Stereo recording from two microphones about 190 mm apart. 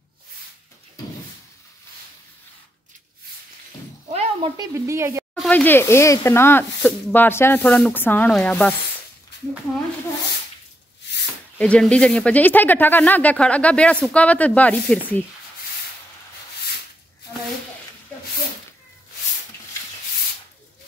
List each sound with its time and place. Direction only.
4.1 s a sound: 35° right (ahead or behind)
4.6 s speech: 15° right (ahead or behind)
5.3 s speech: 10° left (ahead or behind)
11.5 s speech: 5° left (ahead or behind)